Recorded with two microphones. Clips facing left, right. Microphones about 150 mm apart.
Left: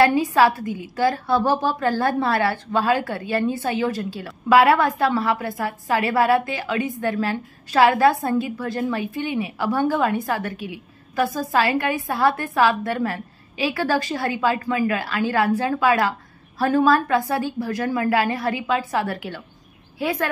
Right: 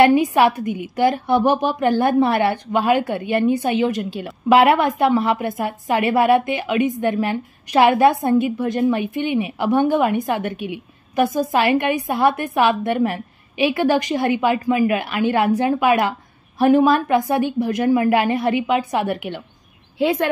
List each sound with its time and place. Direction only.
0.0 s a woman's voice: 20° right (ahead or behind)